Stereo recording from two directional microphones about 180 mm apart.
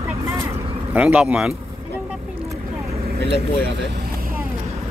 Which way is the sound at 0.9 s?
10° right (ahead or behind).